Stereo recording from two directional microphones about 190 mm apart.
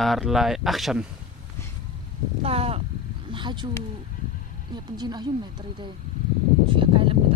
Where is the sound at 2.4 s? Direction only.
30° right (ahead or behind).